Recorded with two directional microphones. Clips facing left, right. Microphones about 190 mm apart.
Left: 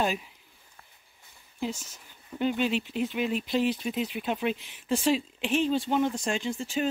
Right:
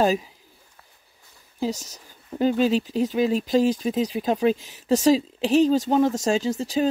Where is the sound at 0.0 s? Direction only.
40° right (ahead or behind).